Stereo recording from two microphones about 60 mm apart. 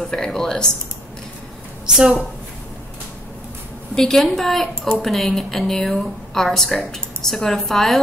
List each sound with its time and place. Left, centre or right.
0.1 s speech: centre
1.9 s speech: centre
3.9 s speech: centre